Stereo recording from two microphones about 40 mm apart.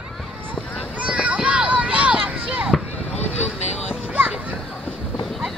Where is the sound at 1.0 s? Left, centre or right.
Right.